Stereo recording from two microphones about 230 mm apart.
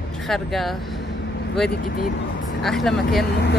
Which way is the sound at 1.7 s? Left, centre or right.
Left.